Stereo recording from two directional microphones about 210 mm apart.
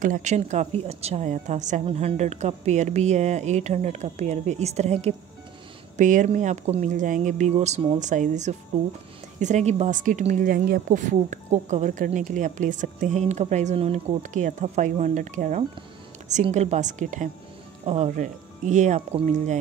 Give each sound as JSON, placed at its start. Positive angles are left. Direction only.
{"t": 0.0, "sound": "a woman's voice", "side_deg": -35}